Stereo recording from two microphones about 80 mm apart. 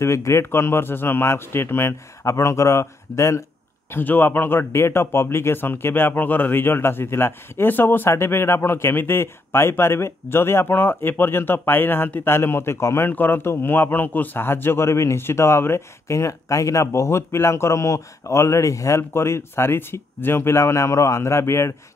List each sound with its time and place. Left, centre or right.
0.0 s a man's voice: left
3.9 s a man's voice: left